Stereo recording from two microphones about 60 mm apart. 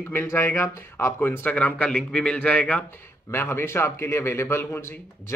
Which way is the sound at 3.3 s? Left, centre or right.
Left.